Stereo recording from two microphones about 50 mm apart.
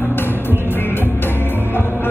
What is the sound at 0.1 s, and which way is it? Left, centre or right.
Music, left.